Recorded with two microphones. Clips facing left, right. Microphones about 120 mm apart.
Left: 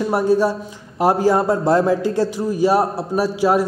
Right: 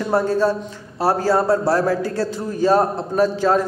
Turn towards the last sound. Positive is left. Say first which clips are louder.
# even
turn(degrees=10)  # may be behind; listen again after turning